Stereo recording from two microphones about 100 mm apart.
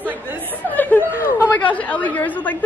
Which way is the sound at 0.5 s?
20° left (ahead or behind).